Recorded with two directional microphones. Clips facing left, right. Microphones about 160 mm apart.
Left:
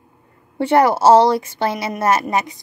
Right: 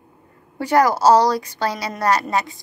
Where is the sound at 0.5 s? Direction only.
25° left (ahead or behind).